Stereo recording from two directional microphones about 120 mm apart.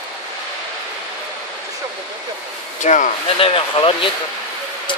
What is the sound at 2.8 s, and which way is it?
Speech, 90° left.